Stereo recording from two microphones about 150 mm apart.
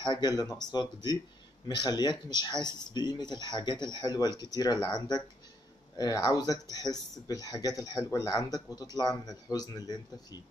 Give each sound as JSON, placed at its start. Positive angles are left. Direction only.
{"t": 0.0, "sound": "speech", "side_deg": 30}